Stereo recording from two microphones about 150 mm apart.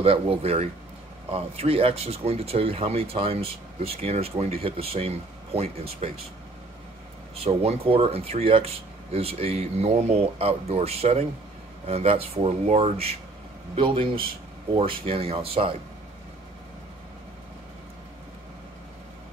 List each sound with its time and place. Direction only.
0.0 s speech: 40° right (ahead or behind)
7.4 s speech: 40° right (ahead or behind)